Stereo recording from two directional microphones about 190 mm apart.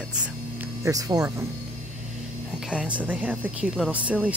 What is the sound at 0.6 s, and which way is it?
Speech, 20° right (ahead or behind).